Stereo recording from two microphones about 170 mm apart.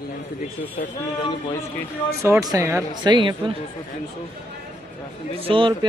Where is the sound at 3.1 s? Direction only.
30° right (ahead or behind).